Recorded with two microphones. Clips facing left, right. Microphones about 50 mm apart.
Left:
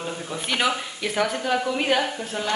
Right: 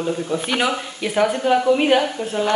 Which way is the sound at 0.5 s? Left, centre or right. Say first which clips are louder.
Left 1 dB; centre.